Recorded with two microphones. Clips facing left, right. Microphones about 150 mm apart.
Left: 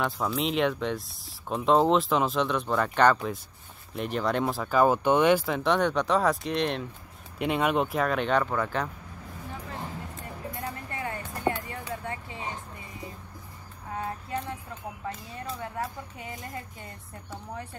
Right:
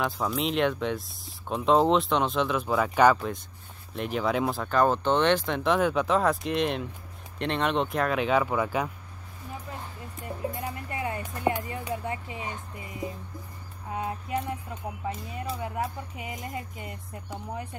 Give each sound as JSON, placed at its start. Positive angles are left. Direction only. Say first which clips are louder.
{"t": 0.0, "sound": "speech", "louder": "even", "side_deg": 0}
{"t": 10.5, "sound": "music", "louder": "right 2 dB", "side_deg": -20}
{"t": 13.9, "sound": "music", "louder": "right 2 dB", "side_deg": -15}
{"t": 15.0, "sound": "speech", "louder": "right 3 dB", "side_deg": -15}